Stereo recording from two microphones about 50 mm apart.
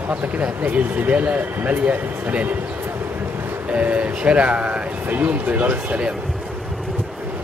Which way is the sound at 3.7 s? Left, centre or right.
Right.